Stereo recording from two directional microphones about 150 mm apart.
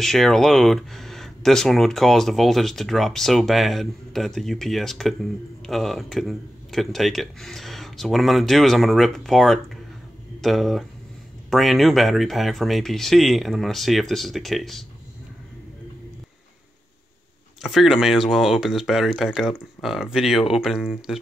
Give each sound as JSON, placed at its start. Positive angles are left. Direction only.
{"t": 0.0, "sound": "speech", "side_deg": 0}
{"t": 17.6, "sound": "speech", "side_deg": 0}